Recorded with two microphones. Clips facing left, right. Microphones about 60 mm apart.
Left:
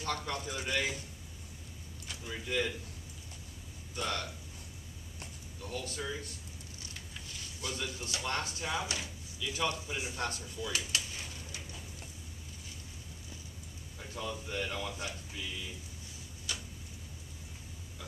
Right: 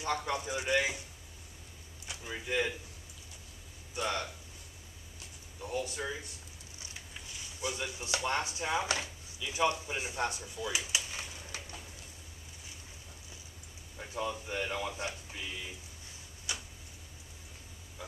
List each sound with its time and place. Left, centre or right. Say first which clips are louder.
0.0 s speech: right 3 dB; centre
2.0 s speech: right 1 dB; centre
3.9 s speech: right 2 dB; centre
5.6 s speech: right 4 dB; centre
6.8 s a sound: right 1 dB; centre
8.2 s speech: right 2 dB; centre
8.8 s speech: right 4 dB; right
9.4 s speech: right 4 dB; right
13.9 s speech: right 4 dB; centre
16.5 s tick-tock: right 1 dB; centre